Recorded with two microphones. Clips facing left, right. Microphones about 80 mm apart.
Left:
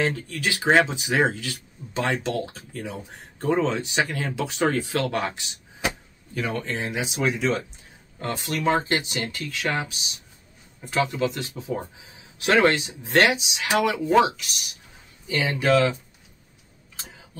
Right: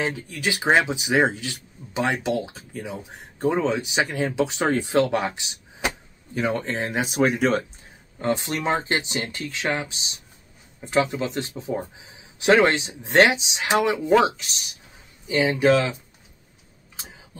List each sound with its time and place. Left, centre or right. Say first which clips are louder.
0.0 s speech: left 1 dB; centre; by 7.6 s right
8.2 s speech: right 3 dB; right